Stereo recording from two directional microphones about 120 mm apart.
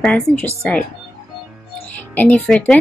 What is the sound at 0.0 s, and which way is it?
Speech, 5° left (ahead or behind).